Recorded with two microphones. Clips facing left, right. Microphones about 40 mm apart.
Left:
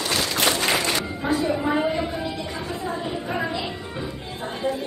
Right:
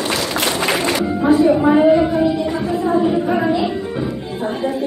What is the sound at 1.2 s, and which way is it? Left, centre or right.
Music, centre.